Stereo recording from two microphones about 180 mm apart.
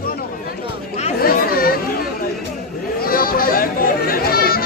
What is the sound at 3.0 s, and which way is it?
Chatter, 55° left (ahead or behind).